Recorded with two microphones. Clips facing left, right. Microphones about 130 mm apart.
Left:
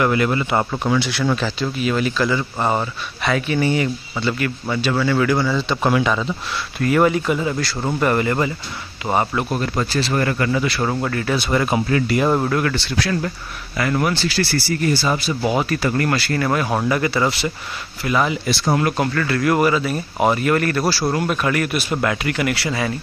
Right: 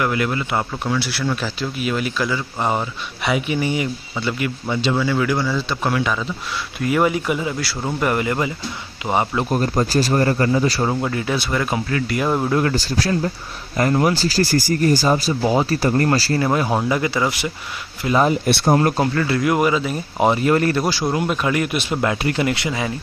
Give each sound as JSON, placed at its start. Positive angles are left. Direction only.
{"t": 0.0, "sound": "speech", "side_deg": 0}
{"t": 6.8, "sound": "speech", "side_deg": -10}
{"t": 9.6, "sound": "speech", "side_deg": -40}
{"t": 10.8, "sound": "speech", "side_deg": -10}
{"t": 11.5, "sound": "speech", "side_deg": 15}
{"t": 12.1, "sound": "speech", "side_deg": 0}
{"t": 12.4, "sound": "speech", "side_deg": -25}
{"t": 12.7, "sound": "speech", "side_deg": -40}
{"t": 16.9, "sound": "speech", "side_deg": -15}
{"t": 18.0, "sound": "speech", "side_deg": -35}
{"t": 18.7, "sound": "speech", "side_deg": -30}
{"t": 19.1, "sound": "speech", "side_deg": -20}